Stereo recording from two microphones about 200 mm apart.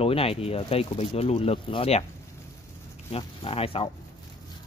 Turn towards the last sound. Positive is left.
turn(degrees=30)  # may be behind; listen again after turning